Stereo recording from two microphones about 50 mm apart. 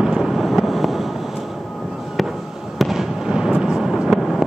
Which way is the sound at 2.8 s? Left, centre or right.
Centre.